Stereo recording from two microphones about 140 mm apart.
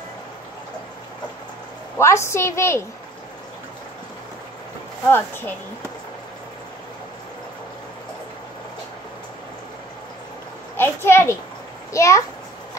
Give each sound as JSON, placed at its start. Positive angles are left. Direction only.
{"t": 2.0, "sound": "a woman's voice", "side_deg": 20}
{"t": 5.1, "sound": "a child's voice", "side_deg": 15}
{"t": 10.8, "sound": "a child's voice", "side_deg": 15}